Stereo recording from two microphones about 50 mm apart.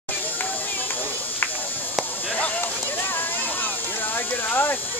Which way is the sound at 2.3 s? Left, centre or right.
Left.